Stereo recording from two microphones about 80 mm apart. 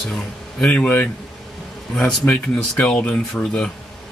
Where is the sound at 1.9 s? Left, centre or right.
Centre.